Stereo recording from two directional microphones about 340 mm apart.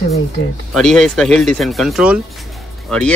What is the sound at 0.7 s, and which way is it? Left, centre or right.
Speech, centre.